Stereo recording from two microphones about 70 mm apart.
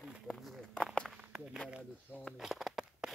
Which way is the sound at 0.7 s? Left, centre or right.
Centre.